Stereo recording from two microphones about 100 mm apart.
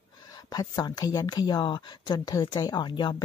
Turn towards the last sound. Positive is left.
turn(degrees=50)  # may be behind; listen again after turning